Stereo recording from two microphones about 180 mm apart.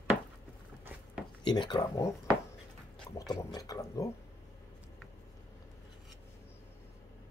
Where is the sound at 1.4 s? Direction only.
25° left (ahead or behind).